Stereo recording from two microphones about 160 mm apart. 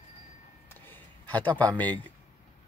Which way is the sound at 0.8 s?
10° left (ahead or behind).